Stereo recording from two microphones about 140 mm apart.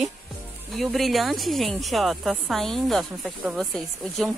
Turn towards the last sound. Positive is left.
turn(degrees=0)  # may be behind; listen again after turning